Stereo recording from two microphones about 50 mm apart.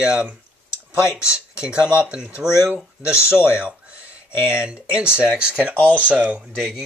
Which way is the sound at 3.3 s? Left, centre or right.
Right.